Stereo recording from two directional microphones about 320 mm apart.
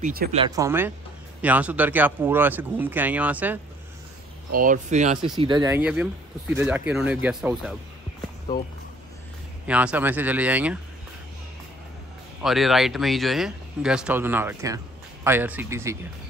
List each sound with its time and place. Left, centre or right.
0.0 s speech: right
0.4 s speech: centre
4.5 s speech: right; by 7.7 s centre
9.7 s speech: centre
12.4 s speech: centre